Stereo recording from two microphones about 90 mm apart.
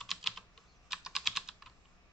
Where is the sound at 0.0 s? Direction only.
Centre (ahead or behind).